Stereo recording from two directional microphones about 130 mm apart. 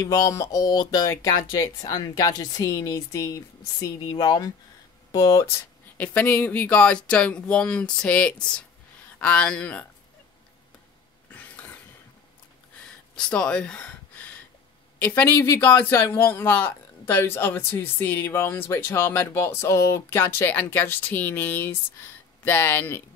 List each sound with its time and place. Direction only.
0.0 s a woman's voice: 25° left (ahead or behind)
5.9 s speech: 10° left (ahead or behind)
13.1 s speech: 5° left (ahead or behind)